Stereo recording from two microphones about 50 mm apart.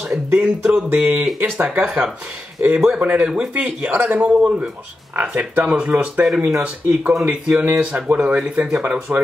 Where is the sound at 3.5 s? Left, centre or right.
Right.